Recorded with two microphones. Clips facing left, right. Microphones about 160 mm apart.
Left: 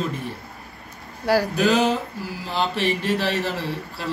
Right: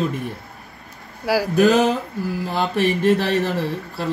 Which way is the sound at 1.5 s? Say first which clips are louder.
Right 4 dB; 45° right (ahead or behind).